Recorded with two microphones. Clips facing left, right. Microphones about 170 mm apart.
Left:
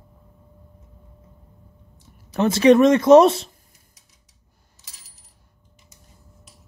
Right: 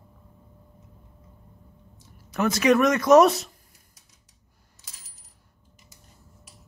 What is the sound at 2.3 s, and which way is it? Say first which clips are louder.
Speech: left 6 dB; 30° left (ahead or behind).